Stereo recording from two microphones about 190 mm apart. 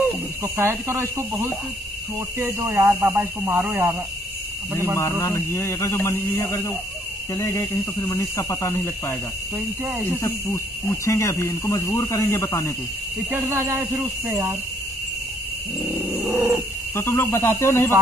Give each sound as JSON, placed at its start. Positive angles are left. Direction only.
{"t": 0.0, "sound": "speech", "side_deg": -15}
{"t": 4.9, "sound": "speech", "side_deg": 15}
{"t": 9.6, "sound": "speech", "side_deg": -10}
{"t": 10.2, "sound": "speech", "side_deg": 15}
{"t": 13.3, "sound": "speech", "side_deg": -15}
{"t": 15.9, "sound": "speech", "side_deg": -15}
{"t": 16.9, "sound": "speech", "side_deg": 15}